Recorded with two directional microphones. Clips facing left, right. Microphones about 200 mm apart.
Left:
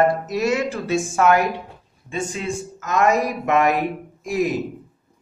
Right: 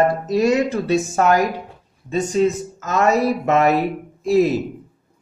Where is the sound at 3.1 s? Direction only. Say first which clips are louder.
Right 5 dB; 15° left (ahead or behind).